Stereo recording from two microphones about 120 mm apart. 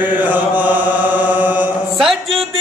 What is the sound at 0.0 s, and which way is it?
Mantra, 15° right (ahead or behind).